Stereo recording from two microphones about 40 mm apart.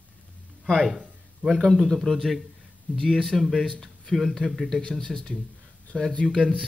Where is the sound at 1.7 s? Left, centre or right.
Centre.